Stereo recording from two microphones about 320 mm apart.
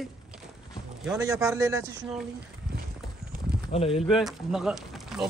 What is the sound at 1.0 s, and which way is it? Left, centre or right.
Speech, centre.